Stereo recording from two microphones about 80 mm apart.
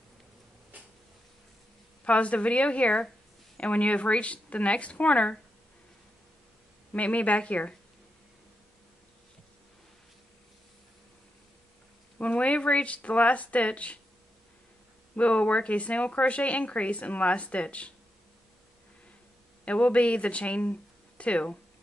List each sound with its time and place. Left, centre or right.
0.7 s a sound: right
2.0 s speech: centre
6.9 s speech: centre
12.2 s speech: centre
15.1 s speech: centre
19.6 s speech: centre